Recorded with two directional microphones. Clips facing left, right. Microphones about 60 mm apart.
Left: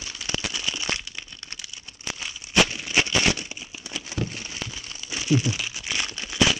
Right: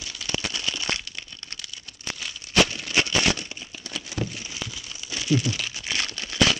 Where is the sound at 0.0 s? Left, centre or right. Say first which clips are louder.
Even; left.